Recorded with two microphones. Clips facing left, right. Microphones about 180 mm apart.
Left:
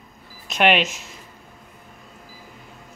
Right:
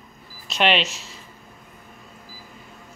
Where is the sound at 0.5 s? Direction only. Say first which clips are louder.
Left 2 dB; 10° left (ahead or behind).